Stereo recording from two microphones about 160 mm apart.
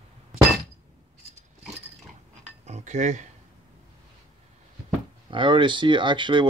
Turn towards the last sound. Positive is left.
turn(degrees=-30)  # may be behind; listen again after turning